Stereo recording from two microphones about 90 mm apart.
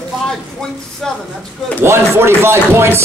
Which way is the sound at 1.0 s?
5° left (ahead or behind).